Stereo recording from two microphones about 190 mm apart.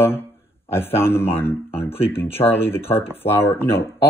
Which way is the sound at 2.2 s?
30° left (ahead or behind).